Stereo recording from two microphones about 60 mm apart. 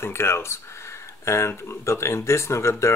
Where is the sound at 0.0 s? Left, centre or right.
Left.